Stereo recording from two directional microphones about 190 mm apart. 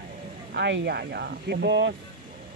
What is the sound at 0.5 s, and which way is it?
Speech, 65° right (ahead or behind).